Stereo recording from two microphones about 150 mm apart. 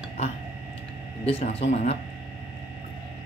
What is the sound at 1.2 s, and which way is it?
Speech, 45° left (ahead or behind).